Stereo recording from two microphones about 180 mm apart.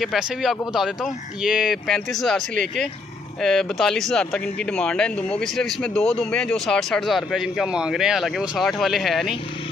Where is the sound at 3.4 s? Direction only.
Centre (ahead or behind).